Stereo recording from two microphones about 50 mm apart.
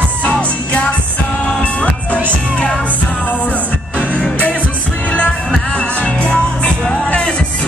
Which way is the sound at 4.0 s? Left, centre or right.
Left.